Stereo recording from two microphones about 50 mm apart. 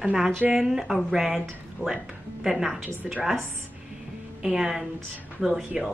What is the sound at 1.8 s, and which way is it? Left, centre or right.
Speech, left.